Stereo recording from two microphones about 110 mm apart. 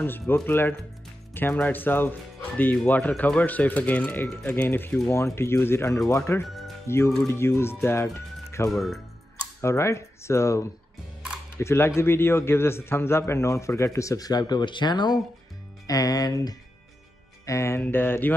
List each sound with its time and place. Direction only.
0.3 s a man's voice: 20° left (ahead or behind)
6.4 s music: centre (ahead or behind)
6.9 s a man's voice: 25° left (ahead or behind)
8.7 s speech: centre (ahead or behind)
9.6 s a man's voice: 25° left (ahead or behind)